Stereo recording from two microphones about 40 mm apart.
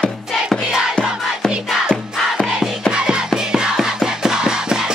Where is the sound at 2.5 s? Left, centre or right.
Right.